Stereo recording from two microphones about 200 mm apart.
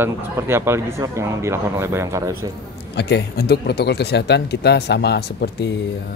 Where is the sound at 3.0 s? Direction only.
55° left (ahead or behind).